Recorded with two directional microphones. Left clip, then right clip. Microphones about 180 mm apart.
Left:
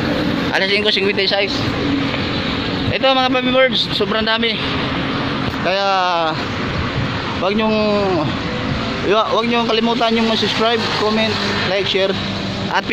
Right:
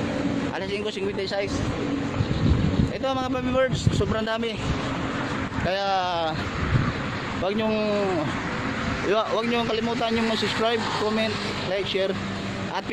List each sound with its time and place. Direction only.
0.6 s speech: 5° left (ahead or behind)
3.0 s speech: 5° left (ahead or behind)
5.7 s speech: 5° left (ahead or behind)
7.4 s speech: centre (ahead or behind)
9.1 s speech: 5° right (ahead or behind)
9.8 s speech: 5° left (ahead or behind)